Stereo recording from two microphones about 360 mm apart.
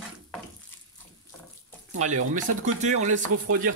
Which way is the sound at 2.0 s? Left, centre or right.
Centre.